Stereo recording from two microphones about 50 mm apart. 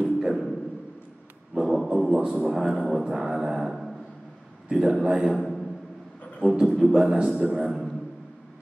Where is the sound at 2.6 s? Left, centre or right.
Centre.